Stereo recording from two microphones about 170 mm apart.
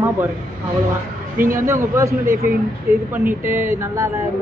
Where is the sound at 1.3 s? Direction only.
55° right (ahead or behind).